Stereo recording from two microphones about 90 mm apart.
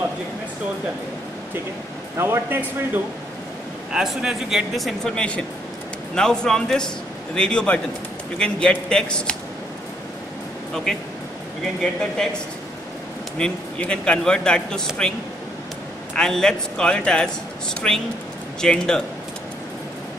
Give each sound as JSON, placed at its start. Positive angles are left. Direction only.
{"t": 2.1, "sound": "speech", "side_deg": -25}
{"t": 3.9, "sound": "speech", "side_deg": -5}
{"t": 10.7, "sound": "speech", "side_deg": 5}
{"t": 13.4, "sound": "speech", "side_deg": 10}
{"t": 16.2, "sound": "speech", "side_deg": 5}